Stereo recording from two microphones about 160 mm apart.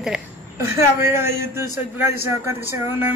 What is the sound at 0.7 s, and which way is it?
Speech, 15° right (ahead or behind).